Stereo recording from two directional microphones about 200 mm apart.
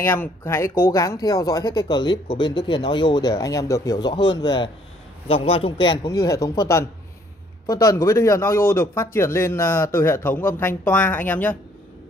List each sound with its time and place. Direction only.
0.0 s a man's voice: 10° left (ahead or behind)